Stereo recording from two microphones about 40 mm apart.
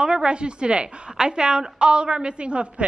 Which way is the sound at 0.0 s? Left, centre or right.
Right.